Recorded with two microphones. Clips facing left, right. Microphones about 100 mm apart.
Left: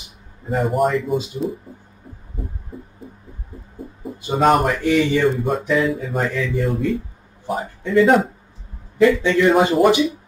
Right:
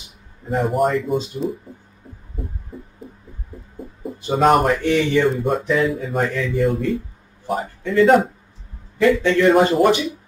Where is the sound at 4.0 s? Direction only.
Centre (ahead or behind).